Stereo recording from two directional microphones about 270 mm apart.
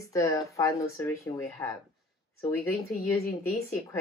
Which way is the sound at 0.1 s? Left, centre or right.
Centre.